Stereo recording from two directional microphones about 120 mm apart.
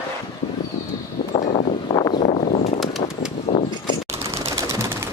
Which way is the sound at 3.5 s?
35° left (ahead or behind).